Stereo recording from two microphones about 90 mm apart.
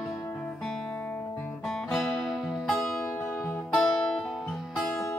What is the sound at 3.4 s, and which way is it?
Music, 20° left (ahead or behind).